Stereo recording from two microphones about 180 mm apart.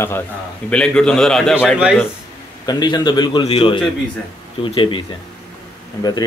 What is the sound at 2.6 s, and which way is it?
Speech, 25° left (ahead or behind).